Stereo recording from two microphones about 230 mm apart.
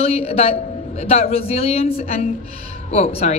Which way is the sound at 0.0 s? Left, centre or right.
Left.